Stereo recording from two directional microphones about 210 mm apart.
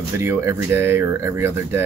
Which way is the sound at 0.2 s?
10° right (ahead or behind).